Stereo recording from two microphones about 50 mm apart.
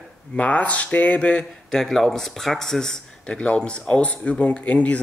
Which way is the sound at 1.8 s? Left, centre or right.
Centre.